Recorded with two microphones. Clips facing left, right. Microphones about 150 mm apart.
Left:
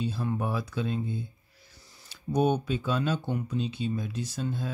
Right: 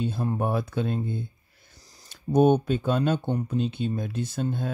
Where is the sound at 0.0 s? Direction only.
55° right (ahead or behind).